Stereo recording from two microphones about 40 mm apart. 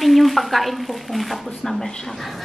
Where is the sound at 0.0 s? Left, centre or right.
Centre.